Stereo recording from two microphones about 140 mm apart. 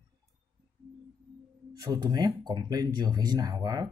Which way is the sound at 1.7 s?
25° right (ahead or behind).